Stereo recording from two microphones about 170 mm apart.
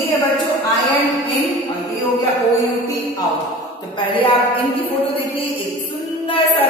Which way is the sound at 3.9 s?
30° left (ahead or behind).